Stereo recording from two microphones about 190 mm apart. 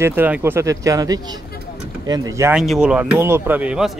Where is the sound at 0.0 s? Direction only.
10° right (ahead or behind).